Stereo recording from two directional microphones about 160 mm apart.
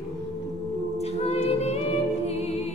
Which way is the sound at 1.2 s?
40° left (ahead or behind).